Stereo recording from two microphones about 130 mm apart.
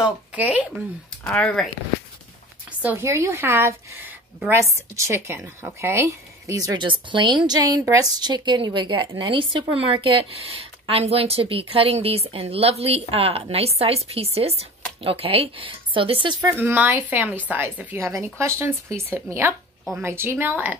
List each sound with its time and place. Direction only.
0.0 s a woman's voice: 10° right (ahead or behind)
1.2 s speech: 5° left (ahead or behind)
2.8 s a woman's voice: 15° right (ahead or behind); by 16.4 s 40° right (ahead or behind)
16.4 s a woman's voice: 15° right (ahead or behind)